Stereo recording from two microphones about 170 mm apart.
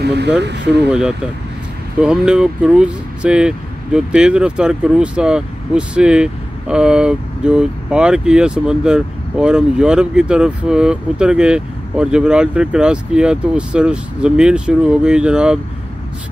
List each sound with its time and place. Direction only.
0.0 s speech: 75° right (ahead or behind)
0.8 s speech: 5° right (ahead or behind)